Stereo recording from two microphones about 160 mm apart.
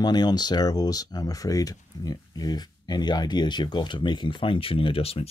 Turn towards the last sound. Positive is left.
turn(degrees=35)  # may be behind; listen again after turning